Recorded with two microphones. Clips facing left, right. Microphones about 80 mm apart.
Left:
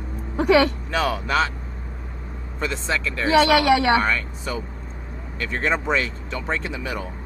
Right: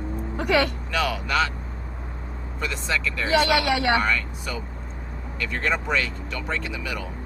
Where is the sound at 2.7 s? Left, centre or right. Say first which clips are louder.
Even; left.